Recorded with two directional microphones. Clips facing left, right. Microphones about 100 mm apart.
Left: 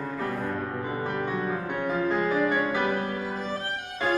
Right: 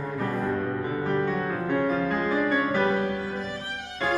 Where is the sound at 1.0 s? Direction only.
10° left (ahead or behind).